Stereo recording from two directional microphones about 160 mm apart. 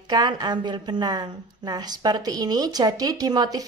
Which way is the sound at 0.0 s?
25° right (ahead or behind).